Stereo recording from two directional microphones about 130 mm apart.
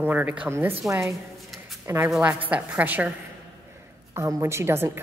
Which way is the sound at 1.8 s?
20° right (ahead or behind).